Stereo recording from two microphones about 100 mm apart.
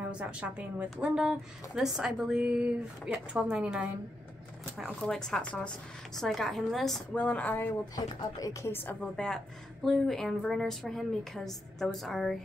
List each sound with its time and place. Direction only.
0.1 s speech: 10° right (ahead or behind)
5.0 s a woman's voice: 5° left (ahead or behind)
7.2 s a woman's voice: 15° left (ahead or behind)
7.9 s speech: 35° left (ahead or behind)
8.7 s a woman's voice: 20° left (ahead or behind)
9.1 s a woman's voice: 10° left (ahead or behind)